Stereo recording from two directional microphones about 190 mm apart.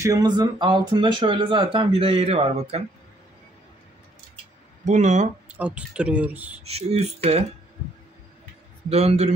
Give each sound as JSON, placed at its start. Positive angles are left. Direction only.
{"t": 0.0, "sound": "speech", "side_deg": -20}
{"t": 4.8, "sound": "speech", "side_deg": -40}
{"t": 5.5, "sound": "speech", "side_deg": -5}
{"t": 6.6, "sound": "speech", "side_deg": -35}
{"t": 8.8, "sound": "speech", "side_deg": -35}